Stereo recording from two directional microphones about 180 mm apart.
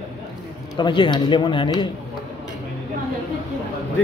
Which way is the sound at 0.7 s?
25° left (ahead or behind).